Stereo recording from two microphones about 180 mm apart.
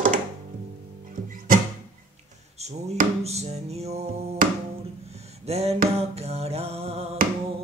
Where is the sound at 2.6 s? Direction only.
35° right (ahead or behind).